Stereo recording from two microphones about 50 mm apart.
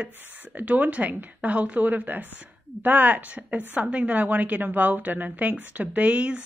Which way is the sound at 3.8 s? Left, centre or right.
Right.